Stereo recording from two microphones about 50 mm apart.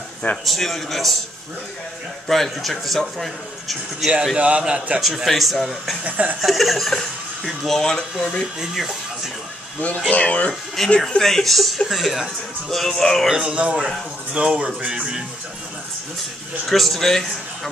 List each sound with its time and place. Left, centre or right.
0.5 s speech: centre
2.2 s speech: centre
4.4 s a man's voice: right
5.0 s speech: centre
6.0 s chuckle: right
6.4 s speech: centre
8.5 s speech: centre
9.8 s speech: left
11.0 s speech: centre
13.3 s speech: centre
13.6 s a man's voice: right
16.6 s speech: centre